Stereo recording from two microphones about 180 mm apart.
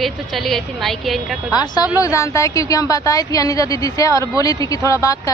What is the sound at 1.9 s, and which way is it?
A woman's voice, 15° left (ahead or behind).